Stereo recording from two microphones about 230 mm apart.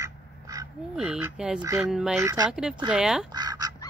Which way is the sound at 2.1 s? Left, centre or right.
Centre.